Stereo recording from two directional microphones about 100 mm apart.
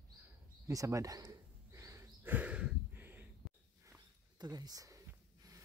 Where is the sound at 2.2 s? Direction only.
15° right (ahead or behind).